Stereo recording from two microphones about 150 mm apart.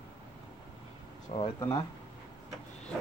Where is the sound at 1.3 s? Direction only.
40° left (ahead or behind).